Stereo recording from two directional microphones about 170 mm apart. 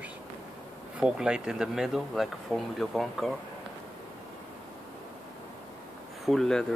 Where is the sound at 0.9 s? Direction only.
5° right (ahead or behind).